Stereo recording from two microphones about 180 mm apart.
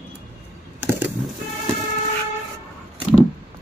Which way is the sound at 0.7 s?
10° right (ahead or behind).